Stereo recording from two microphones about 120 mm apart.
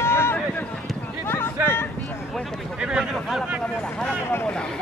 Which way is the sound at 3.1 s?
5° left (ahead or behind).